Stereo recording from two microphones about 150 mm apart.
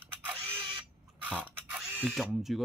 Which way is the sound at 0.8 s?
10° right (ahead or behind).